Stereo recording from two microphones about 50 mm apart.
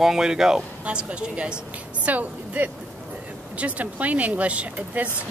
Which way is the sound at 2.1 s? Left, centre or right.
Right.